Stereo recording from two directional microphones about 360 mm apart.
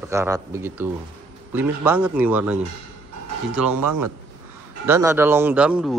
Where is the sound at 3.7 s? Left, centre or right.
Right.